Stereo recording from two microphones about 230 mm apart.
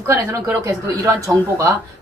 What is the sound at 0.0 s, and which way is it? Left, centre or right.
Speech, centre.